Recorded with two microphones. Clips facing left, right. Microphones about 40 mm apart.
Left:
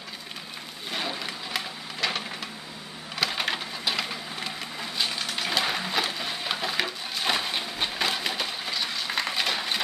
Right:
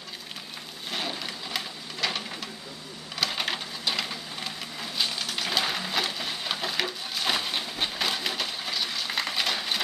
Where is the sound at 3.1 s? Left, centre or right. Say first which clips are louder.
Left 2 dB; centre.